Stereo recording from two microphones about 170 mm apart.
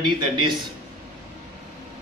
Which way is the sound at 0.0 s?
25° right (ahead or behind).